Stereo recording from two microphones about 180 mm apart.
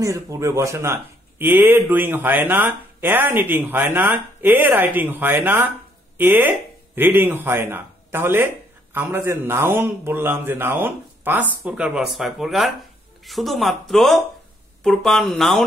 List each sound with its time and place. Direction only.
0.0 s speech: 15° right (ahead or behind); by 15.6 s centre (ahead or behind)